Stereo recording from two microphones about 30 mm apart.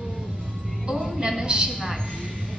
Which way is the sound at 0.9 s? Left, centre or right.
Centre.